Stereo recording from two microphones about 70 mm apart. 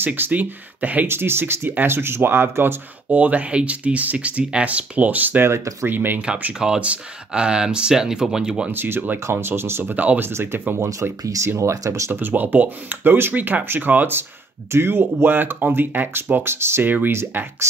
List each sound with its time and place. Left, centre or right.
0.0 s speech: right
1.0 s speech: right
3.1 s speech: right
5.5 s speech: right
5.9 s speech: right
6.2 s speech: centre
8.7 s speech: right
11.2 s speech: right
12.1 s speech: right